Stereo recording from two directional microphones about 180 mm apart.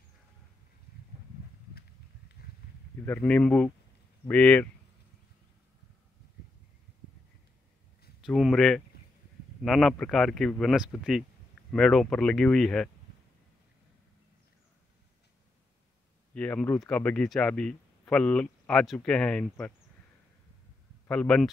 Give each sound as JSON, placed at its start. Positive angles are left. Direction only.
{"t": 2.4, "sound": "a sound", "side_deg": 60}
{"t": 3.1, "sound": "speech", "side_deg": 10}
{"t": 8.2, "sound": "speech", "side_deg": 0}
{"t": 16.3, "sound": "speech", "side_deg": 5}
{"t": 21.1, "sound": "speech", "side_deg": 5}